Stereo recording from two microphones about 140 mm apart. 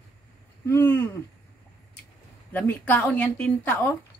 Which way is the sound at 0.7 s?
15° left (ahead or behind).